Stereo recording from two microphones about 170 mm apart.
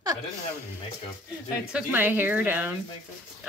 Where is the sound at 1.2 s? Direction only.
10° right (ahead or behind).